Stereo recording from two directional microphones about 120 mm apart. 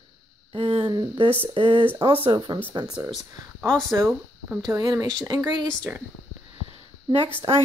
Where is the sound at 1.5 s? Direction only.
45° right (ahead or behind).